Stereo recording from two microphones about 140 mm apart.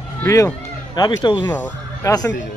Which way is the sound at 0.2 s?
20° left (ahead or behind).